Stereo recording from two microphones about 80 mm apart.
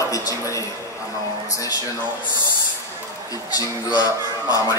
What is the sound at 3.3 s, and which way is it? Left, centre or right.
Speech, left.